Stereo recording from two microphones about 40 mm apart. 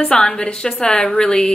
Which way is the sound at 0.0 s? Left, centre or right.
Centre.